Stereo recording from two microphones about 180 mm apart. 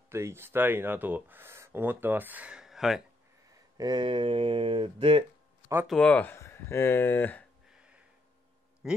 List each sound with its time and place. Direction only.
0.1 s speech: 15° right (ahead or behind)
3.7 s speech: 25° right (ahead or behind)
5.9 s speech: 5° left (ahead or behind)
7.6 s a sound: 5° right (ahead or behind)
8.8 s speech: centre (ahead or behind)